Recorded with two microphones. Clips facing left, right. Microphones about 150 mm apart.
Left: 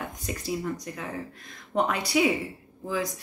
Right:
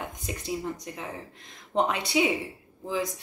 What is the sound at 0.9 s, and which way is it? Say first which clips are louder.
Speech: left 2 dB; 25° right (ahead or behind).